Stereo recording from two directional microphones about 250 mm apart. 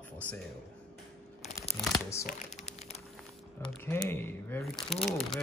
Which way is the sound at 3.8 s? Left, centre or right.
Centre.